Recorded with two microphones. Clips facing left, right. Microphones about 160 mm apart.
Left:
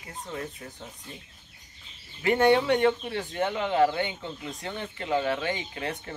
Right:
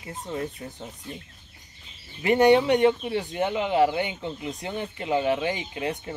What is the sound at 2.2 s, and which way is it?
Speech, 20° right (ahead or behind).